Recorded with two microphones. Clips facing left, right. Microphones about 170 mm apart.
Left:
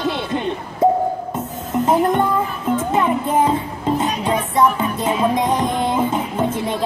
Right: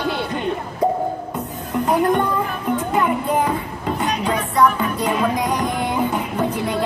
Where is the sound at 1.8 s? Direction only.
25° left (ahead or behind).